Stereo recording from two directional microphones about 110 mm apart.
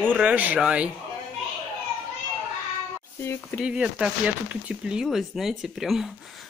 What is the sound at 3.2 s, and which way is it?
Speech, 25° left (ahead or behind).